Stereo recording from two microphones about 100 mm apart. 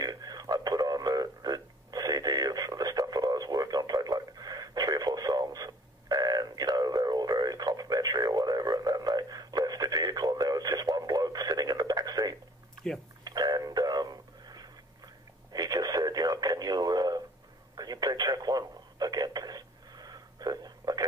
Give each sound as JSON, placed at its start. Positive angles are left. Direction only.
{"t": 0.0, "sound": "a sound", "side_deg": -40}
{"t": 15.5, "sound": "radio", "side_deg": -40}
{"t": 17.7, "sound": "telephone", "side_deg": -40}